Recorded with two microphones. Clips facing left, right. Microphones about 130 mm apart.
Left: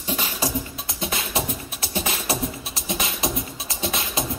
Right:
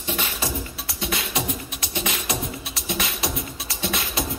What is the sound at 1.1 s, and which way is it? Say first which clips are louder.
Beatboxing: even; 30° left (ahead or behind).